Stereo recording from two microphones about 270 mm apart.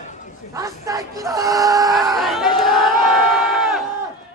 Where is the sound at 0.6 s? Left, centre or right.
Centre.